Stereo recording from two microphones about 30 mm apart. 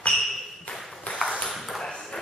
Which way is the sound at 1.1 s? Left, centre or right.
Left.